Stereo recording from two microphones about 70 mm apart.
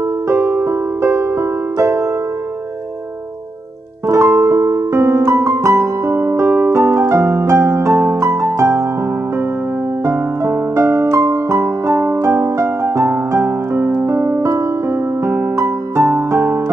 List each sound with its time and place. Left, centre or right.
0.3 s music: right
4.1 s music: right
10.4 s music: right